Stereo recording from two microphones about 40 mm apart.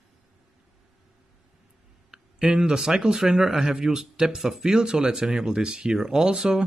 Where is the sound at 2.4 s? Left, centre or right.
Right.